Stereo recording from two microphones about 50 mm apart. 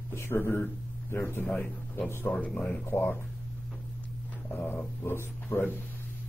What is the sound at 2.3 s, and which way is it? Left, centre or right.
Speech, centre.